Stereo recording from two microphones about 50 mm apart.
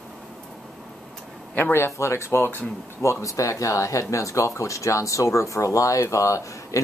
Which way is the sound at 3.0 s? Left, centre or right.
Left.